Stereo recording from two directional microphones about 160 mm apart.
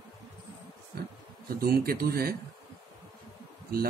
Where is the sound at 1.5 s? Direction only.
70° right (ahead or behind).